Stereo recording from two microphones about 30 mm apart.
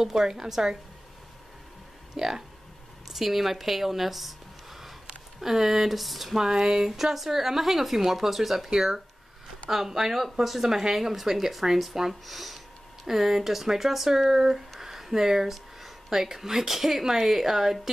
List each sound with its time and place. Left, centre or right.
0.0 s speech: centre
2.1 s speech: centre
6.3 s speech: centre
13.0 s speech: centre
14.8 s a sound: centre
16.1 s speech: centre